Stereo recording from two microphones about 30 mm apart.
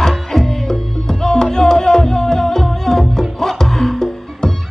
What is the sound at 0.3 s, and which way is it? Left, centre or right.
Music, centre.